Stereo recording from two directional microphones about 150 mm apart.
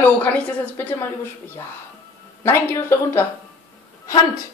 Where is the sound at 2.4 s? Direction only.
15° left (ahead or behind).